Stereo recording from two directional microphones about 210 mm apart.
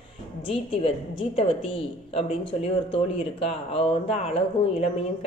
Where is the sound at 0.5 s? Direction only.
25° left (ahead or behind).